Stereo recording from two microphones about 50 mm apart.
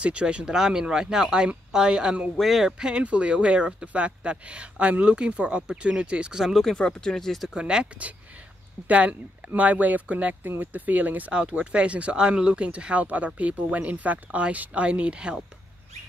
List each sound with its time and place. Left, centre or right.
0.0 s speech: right
2.4 s speech: centre
2.8 s speech: right
6.4 s speech: centre
6.8 s speech: centre
7.4 s speech: centre; by 11.3 s right
11.3 s speech: right